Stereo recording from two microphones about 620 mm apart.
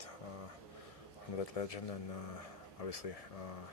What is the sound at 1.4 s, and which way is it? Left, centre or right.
Speech, left.